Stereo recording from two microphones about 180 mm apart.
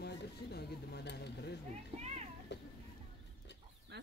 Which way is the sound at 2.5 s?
75° left (ahead or behind).